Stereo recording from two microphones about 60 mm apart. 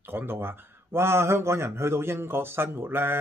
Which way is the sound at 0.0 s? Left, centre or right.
Right.